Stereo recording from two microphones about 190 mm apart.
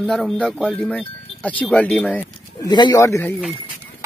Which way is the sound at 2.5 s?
20° left (ahead or behind).